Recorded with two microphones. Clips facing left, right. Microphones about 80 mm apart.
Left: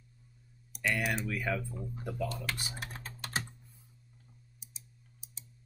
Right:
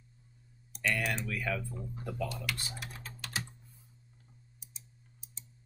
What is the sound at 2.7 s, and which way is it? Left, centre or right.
Typing, left.